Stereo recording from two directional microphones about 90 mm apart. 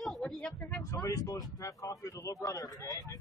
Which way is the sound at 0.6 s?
20° left (ahead or behind).